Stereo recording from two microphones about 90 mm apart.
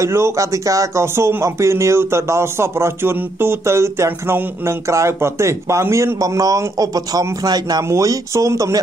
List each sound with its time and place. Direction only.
0.0 s speech: 35° right (ahead or behind); by 7.8 s 50° right (ahead or behind)
7.9 s speech: 35° right (ahead or behind)